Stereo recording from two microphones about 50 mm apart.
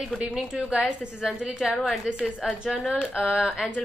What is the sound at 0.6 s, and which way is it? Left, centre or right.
A woman's voice, centre.